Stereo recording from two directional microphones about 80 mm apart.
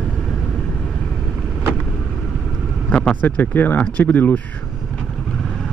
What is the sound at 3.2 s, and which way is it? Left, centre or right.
Speech, left.